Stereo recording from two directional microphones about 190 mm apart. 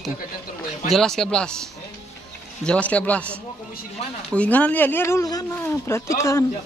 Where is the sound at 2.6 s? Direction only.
5° left (ahead or behind).